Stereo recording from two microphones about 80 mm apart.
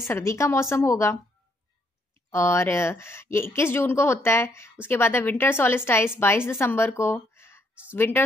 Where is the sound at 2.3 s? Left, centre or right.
Left.